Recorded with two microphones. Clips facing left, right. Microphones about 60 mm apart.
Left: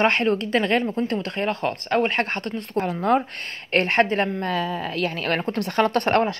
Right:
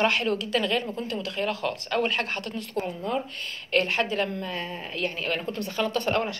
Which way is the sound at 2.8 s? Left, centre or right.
Left.